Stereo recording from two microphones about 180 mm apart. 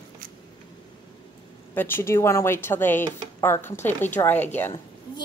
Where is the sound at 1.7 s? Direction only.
10° left (ahead or behind).